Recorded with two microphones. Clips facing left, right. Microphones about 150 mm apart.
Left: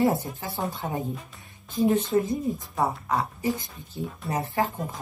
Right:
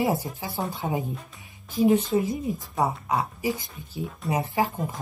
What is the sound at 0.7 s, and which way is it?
Speech, 20° right (ahead or behind).